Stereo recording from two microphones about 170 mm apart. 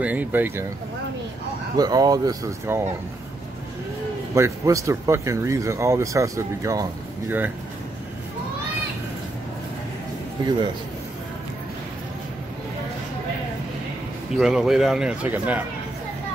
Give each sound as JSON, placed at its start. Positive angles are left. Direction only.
{"t": 0.0, "sound": "speech", "side_deg": -10}
{"t": 1.8, "sound": "speech", "side_deg": -25}
{"t": 4.4, "sound": "speech", "side_deg": -20}
{"t": 14.3, "sound": "speech", "side_deg": 0}